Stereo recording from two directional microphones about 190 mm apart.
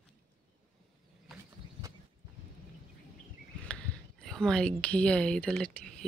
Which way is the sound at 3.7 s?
5° left (ahead or behind).